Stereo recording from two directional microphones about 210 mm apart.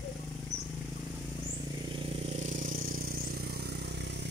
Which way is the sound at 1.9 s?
30° right (ahead or behind).